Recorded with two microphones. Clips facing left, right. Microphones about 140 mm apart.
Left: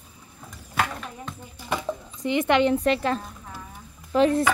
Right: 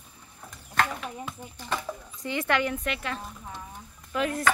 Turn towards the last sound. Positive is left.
turn(degrees=30)  # may be behind; listen again after turning